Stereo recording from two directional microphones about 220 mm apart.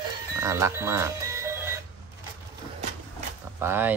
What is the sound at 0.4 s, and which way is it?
Music, 10° right (ahead or behind).